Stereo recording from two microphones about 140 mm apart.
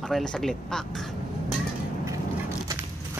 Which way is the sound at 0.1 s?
Centre (ahead or behind).